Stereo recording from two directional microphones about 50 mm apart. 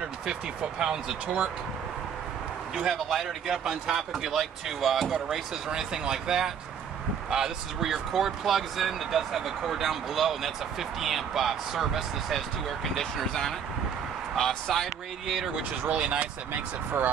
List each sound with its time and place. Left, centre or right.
0.3 s speech: centre
2.7 s speech: centre
5.1 s speech: centre
15.8 s speech: right